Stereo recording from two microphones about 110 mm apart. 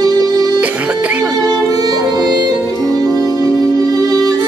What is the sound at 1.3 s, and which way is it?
Music, 35° right (ahead or behind).